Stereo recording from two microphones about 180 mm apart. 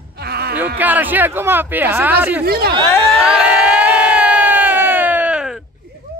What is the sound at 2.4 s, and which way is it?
Speech, 60° right (ahead or behind).